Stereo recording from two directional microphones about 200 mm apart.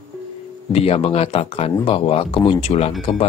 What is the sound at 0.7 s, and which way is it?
Speech, 30° left (ahead or behind).